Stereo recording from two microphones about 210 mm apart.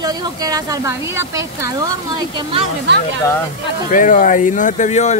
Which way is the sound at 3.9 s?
40° left (ahead or behind).